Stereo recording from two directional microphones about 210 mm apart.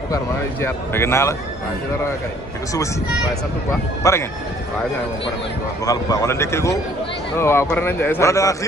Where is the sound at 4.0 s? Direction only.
15° left (ahead or behind).